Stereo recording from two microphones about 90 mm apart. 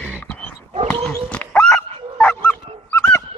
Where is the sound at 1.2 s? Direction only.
15° left (ahead or behind).